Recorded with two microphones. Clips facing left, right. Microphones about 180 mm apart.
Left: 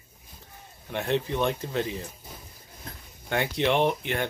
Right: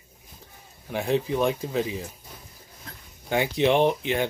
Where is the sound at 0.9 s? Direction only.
5° right (ahead or behind).